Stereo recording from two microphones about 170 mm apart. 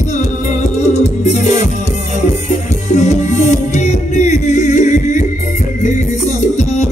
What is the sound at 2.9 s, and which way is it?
Music, 45° left (ahead or behind).